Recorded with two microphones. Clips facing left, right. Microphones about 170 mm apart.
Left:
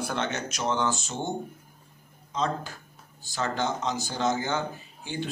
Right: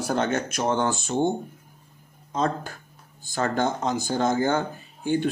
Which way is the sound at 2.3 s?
50° right (ahead or behind).